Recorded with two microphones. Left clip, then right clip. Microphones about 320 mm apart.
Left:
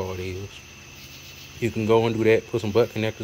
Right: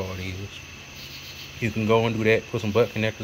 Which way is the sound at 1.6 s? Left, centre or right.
Centre.